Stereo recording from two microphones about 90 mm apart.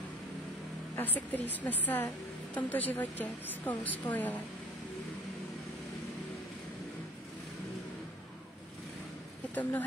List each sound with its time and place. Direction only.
0.9 s a woman's voice: 20° left (ahead or behind)
9.6 s a woman's voice: 20° left (ahead or behind)